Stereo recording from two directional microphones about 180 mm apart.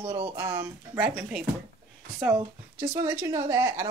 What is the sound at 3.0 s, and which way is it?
Speech, 15° right (ahead or behind).